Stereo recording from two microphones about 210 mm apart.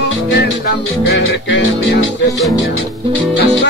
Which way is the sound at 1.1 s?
60° left (ahead or behind).